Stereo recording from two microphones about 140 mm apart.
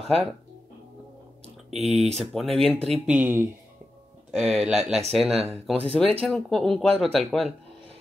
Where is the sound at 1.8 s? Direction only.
50° right (ahead or behind).